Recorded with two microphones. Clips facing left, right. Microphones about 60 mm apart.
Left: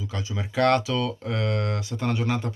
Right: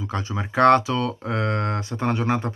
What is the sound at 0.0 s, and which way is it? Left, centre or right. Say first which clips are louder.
Speech: right 4 dB; right.